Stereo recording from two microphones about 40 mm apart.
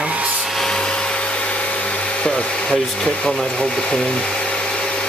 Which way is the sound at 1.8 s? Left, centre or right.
Left.